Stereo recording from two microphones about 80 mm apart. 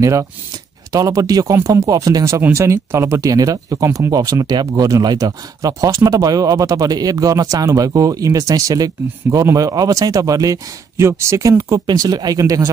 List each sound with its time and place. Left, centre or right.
0.0 s speech: right
11.8 s speech: right